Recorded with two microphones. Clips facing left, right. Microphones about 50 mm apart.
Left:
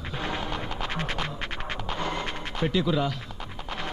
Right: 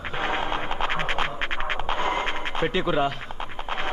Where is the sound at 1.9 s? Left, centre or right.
Right.